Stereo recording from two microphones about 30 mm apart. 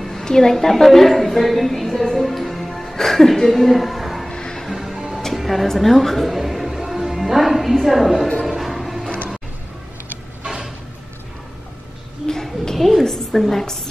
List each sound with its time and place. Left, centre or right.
0.2 s a woman's voice: centre
4.3 s music: left
4.6 s music: centre
5.3 s music: centre
5.8 s a woman's voice: centre
8.5 s music: centre
12.3 s a sound: centre
12.7 s a sound: centre